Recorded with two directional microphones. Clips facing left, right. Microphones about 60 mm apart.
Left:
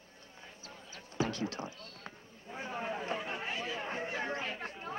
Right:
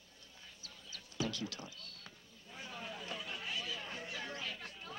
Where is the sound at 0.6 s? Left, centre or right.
Left.